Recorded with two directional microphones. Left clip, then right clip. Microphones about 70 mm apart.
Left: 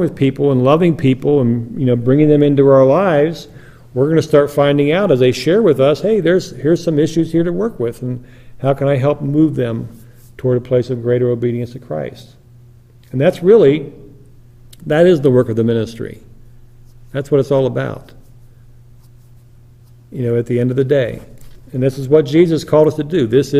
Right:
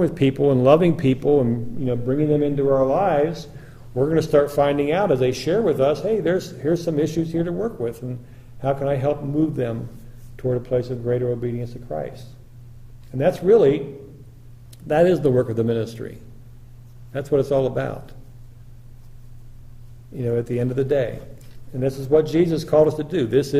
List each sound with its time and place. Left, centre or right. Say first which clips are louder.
0.0 s speech: left 4 dB; centre
2.0 s a man's voice: left 9 dB; left
20.2 s a man's voice: left 6 dB; left